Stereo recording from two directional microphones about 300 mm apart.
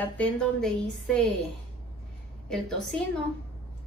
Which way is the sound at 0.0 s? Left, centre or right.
Centre.